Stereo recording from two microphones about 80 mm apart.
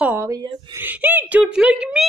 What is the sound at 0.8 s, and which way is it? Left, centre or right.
A woman's voice, right.